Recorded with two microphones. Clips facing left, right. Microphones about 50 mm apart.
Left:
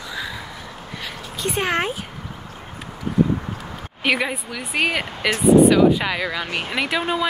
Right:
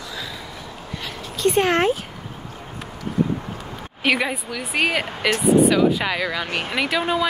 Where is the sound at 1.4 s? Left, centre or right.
Centre.